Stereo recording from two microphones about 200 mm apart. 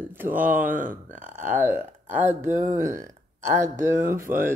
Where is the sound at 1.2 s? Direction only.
40° right (ahead or behind).